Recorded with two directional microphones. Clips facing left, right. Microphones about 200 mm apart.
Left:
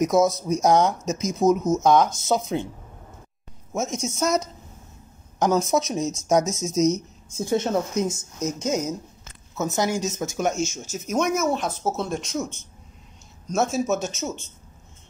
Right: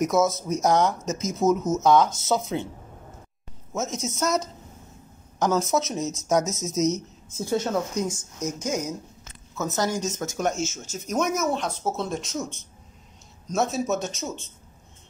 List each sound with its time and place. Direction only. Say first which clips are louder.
0.0 s speech: left 2 dB; 15° left (ahead or behind)
3.7 s speech: left 2 dB; 15° left (ahead or behind)
5.4 s speech: left 2 dB; 15° left (ahead or behind)
9.6 s speech: left 2 dB; 10° left (ahead or behind)
11.1 s speech: left 2 dB; centre (ahead or behind)
13.5 s speech: left 2 dB; centre (ahead or behind)